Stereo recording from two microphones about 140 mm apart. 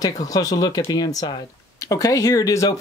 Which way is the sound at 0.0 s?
25° left (ahead or behind).